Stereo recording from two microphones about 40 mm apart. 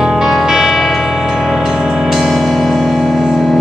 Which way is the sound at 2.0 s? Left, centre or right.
Centre.